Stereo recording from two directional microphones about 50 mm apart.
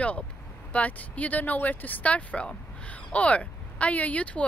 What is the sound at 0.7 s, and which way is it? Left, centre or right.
Speech, left.